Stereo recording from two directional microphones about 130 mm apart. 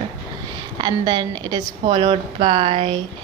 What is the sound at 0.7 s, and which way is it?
A woman's voice, 35° right (ahead or behind).